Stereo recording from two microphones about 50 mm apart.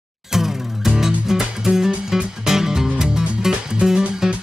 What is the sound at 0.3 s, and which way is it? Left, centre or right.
Music, centre.